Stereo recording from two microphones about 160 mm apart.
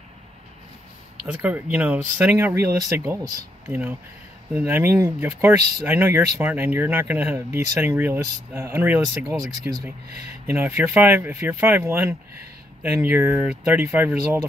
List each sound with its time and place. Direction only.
1.2 s speech: 10° right (ahead or behind)
4.6 s speech: 10° right (ahead or behind)